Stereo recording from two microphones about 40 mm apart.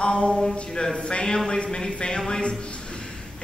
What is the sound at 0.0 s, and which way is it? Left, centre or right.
Speech, left.